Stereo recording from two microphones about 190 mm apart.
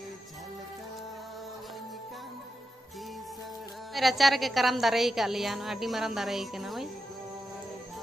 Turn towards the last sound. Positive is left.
turn(degrees=0)  # may be behind; listen again after turning